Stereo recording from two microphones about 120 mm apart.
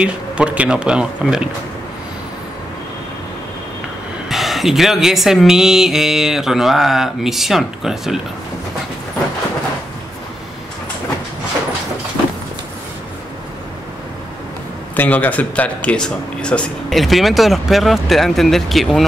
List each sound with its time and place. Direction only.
0.0 s speech: 10° right (ahead or behind)
4.3 s speech: centre (ahead or behind)
15.0 s speech: 15° left (ahead or behind)